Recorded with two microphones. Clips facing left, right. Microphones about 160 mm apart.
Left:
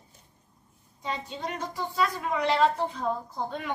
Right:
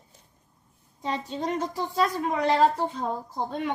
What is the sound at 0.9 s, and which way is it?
A woman's voice, 40° right (ahead or behind).